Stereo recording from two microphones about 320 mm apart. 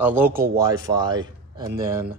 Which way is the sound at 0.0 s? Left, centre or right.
Centre.